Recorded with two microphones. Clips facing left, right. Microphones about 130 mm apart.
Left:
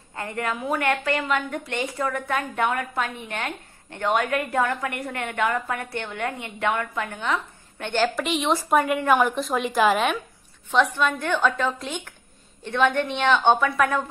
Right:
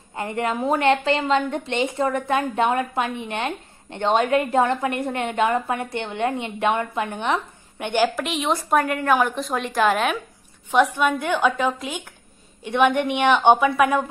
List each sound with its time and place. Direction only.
0.1 s a woman's voice: 20° right (ahead or behind)
8.2 s a woman's voice: centre (ahead or behind)
10.7 s a woman's voice: 10° right (ahead or behind)